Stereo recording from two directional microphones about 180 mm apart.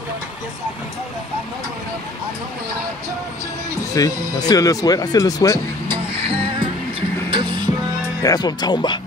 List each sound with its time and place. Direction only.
3.9 s speech: 20° left (ahead or behind)
5.9 s music: 30° right (ahead or behind)
8.2 s speech: 20° left (ahead or behind)